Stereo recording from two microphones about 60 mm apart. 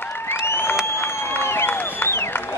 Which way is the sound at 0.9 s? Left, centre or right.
Left.